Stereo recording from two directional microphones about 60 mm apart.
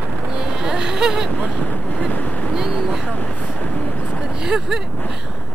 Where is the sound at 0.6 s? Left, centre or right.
Centre.